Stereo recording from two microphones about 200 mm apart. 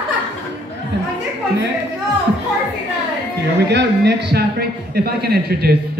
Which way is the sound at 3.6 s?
60° right (ahead or behind).